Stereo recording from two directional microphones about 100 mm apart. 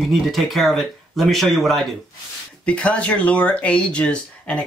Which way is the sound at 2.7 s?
10° left (ahead or behind).